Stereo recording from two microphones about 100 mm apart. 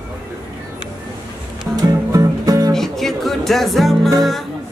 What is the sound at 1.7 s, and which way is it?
Music, 35° right (ahead or behind).